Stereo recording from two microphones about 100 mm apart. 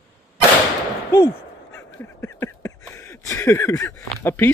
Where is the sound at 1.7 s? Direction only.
25° left (ahead or behind).